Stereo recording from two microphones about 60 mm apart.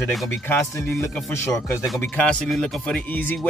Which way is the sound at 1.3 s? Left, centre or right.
Left.